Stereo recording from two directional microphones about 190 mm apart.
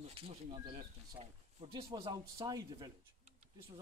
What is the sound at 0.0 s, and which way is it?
Speech, 30° right (ahead or behind).